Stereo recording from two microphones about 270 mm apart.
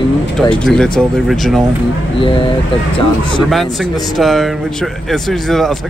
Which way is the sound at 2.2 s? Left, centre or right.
Centre.